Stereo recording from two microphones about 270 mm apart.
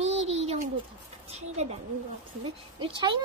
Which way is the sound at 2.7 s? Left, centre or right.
Centre.